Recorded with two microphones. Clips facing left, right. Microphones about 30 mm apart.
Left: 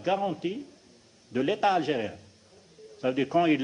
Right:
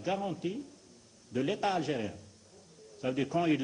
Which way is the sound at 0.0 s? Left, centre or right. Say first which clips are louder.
Left 6 dB; left.